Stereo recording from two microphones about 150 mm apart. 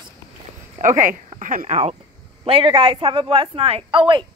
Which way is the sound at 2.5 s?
35° right (ahead or behind).